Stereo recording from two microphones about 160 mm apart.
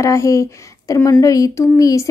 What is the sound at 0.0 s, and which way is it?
A woman's voice, 20° left (ahead or behind).